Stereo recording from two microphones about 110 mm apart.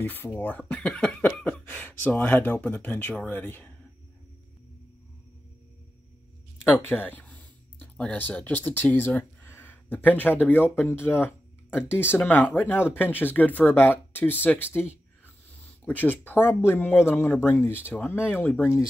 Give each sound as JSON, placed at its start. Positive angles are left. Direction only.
{"t": 0.0, "sound": "speech", "side_deg": 20}
{"t": 6.7, "sound": "speech", "side_deg": 20}